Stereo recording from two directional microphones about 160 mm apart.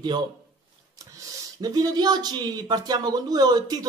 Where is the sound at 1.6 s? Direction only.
25° right (ahead or behind).